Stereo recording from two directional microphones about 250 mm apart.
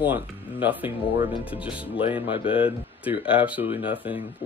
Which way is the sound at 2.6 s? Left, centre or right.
Centre.